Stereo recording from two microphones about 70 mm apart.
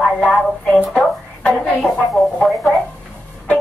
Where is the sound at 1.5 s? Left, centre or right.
Centre.